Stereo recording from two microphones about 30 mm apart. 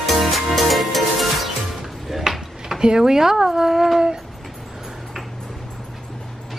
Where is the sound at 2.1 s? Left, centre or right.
Centre.